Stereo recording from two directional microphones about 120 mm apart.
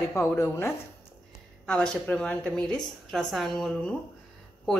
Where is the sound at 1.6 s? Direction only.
5° left (ahead or behind).